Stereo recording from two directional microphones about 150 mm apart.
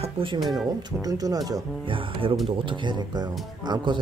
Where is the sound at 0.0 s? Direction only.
35° right (ahead or behind).